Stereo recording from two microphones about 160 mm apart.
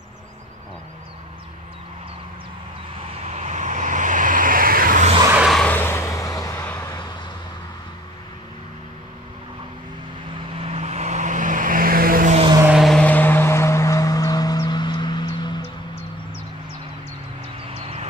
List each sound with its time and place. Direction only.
3.3 s vehicle: 45° right (ahead or behind); by 5.0 s 60° right (ahead or behind)
5.3 s a sound: centre (ahead or behind); by 7.0 s 15° left (ahead or behind)
10.6 s vehicle: 40° right (ahead or behind); by 12.4 s 60° right (ahead or behind)
12.6 s vehicle: centre (ahead or behind); by 15.6 s 30° left (ahead or behind)